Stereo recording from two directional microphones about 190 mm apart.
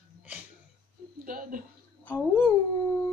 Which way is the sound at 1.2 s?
45° right (ahead or behind).